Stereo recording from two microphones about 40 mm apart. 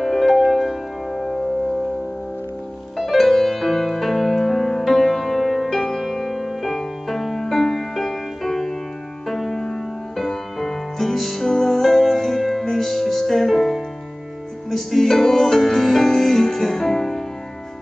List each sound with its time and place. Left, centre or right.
0.0 s music: centre
3.0 s music: centre
5.8 s music: centre
6.0 s music: centre
15.0 s music: centre